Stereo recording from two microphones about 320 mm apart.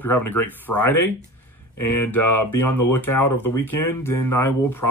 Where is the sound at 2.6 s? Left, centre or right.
Centre.